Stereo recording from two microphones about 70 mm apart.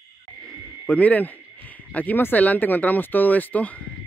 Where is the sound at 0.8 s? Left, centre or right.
Left.